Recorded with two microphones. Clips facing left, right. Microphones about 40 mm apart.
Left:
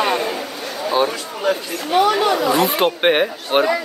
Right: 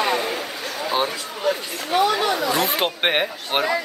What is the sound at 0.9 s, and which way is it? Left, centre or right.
Speech, centre.